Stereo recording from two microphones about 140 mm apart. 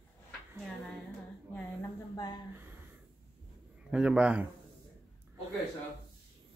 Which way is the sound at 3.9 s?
5° right (ahead or behind).